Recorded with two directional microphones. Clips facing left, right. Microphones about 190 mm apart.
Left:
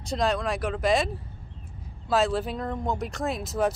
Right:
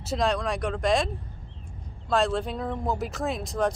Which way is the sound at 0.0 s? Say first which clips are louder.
Even; centre (ahead or behind).